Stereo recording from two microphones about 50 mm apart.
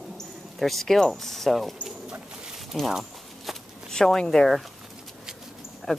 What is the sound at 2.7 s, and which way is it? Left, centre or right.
Speech, centre.